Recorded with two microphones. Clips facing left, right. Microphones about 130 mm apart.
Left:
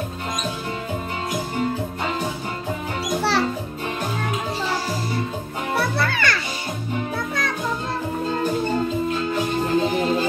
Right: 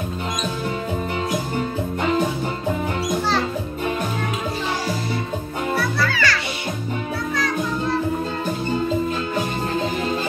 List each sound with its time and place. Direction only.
5.9 s music: 55° left (ahead or behind)